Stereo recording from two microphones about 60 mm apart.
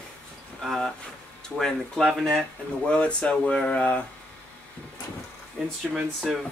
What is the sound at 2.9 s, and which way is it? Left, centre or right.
Speech, centre.